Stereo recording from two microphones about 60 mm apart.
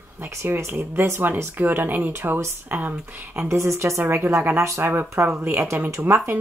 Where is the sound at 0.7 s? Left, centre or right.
Right.